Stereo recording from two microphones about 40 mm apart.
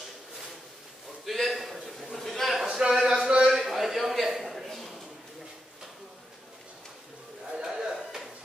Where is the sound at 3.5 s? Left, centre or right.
Centre.